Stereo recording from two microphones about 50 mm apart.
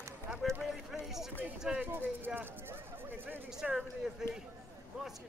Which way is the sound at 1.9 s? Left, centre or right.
Right.